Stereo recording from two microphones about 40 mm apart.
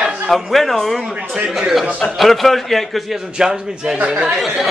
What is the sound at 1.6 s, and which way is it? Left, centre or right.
Speech, centre.